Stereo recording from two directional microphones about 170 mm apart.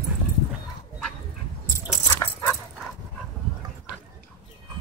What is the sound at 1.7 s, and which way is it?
Keys jangling, 15° left (ahead or behind).